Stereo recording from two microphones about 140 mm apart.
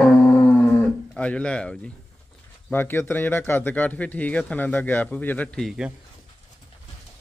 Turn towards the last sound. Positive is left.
turn(degrees=0)  # may be behind; listen again after turning